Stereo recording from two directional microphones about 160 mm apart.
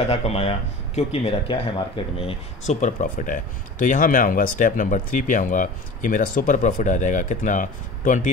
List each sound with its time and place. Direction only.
0.1 s speech: 40° left (ahead or behind)